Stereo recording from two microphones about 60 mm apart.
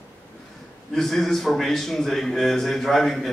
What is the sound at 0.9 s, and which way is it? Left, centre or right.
A man's voice, centre.